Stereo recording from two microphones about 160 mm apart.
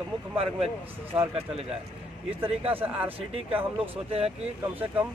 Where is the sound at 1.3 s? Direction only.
40° right (ahead or behind).